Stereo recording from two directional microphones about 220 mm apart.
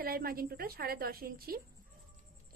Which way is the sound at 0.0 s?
40° right (ahead or behind).